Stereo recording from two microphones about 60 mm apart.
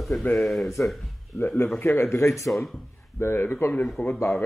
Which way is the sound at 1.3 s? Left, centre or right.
Left.